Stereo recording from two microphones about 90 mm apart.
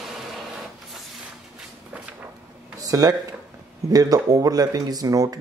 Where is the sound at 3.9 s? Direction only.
40° right (ahead or behind).